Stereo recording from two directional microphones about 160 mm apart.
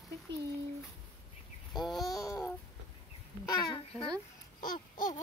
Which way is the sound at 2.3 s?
15° left (ahead or behind).